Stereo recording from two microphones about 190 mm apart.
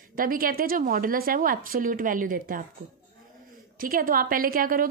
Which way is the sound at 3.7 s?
50° right (ahead or behind).